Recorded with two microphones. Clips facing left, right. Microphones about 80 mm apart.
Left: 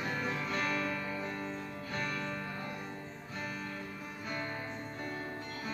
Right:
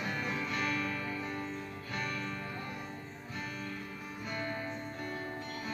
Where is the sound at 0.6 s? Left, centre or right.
Left.